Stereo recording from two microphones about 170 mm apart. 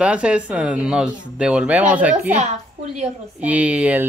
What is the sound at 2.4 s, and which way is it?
Speech, 40° right (ahead or behind).